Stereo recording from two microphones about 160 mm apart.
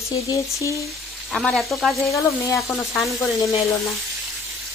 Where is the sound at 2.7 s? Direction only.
Centre (ahead or behind).